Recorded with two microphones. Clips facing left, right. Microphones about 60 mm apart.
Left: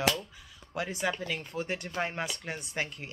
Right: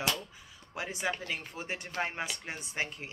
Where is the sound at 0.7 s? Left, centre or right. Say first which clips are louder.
Left 3 dB; centre.